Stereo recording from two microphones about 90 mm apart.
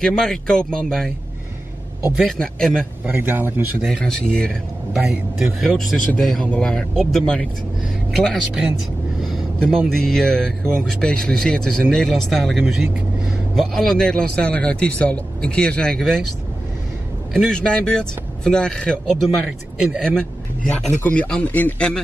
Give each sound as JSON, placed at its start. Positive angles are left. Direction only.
{"t": 0.0, "sound": "speech", "side_deg": 5}
{"t": 2.1, "sound": "speech", "side_deg": 5}
{"t": 3.1, "sound": "a man's voice", "side_deg": -20}
{"t": 3.8, "sound": "speech", "side_deg": 5}
{"t": 5.6, "sound": "speech", "side_deg": 0}
{"t": 9.2, "sound": "a sound", "side_deg": 5}
{"t": 9.8, "sound": "speech", "side_deg": 5}
{"t": 17.3, "sound": "speech", "side_deg": 10}